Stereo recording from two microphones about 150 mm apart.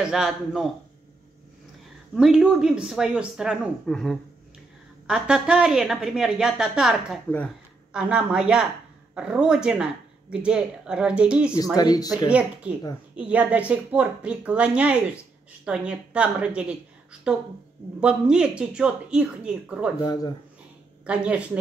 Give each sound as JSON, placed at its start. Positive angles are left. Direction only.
{"t": 0.0, "sound": "speech", "side_deg": -5}
{"t": 2.1, "sound": "speech", "side_deg": -5}
{"t": 7.2, "sound": "speech", "side_deg": 10}
{"t": 7.9, "sound": "speech", "side_deg": -5}
{"t": 11.7, "sound": "speech", "side_deg": 25}
{"t": 12.3, "sound": "speech", "side_deg": -10}
{"t": 18.0, "sound": "speech", "side_deg": -5}
{"t": 20.0, "sound": "speech", "side_deg": 25}
{"t": 21.0, "sound": "speech", "side_deg": -10}